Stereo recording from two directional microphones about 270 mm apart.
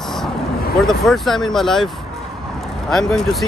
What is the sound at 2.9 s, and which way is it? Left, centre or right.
Speech, centre.